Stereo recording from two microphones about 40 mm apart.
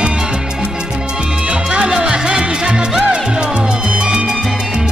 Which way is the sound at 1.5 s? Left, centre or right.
Right.